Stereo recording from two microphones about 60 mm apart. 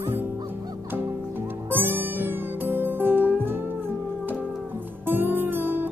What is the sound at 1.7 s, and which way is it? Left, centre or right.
Music, right.